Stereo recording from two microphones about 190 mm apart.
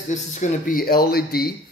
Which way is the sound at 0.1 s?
40° left (ahead or behind).